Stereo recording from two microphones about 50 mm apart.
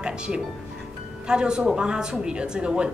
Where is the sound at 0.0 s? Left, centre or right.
Centre.